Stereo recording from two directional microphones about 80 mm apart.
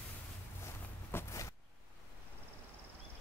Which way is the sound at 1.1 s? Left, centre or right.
Left.